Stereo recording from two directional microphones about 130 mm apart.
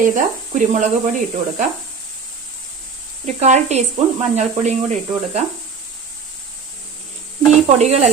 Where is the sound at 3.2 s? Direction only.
60° right (ahead or behind).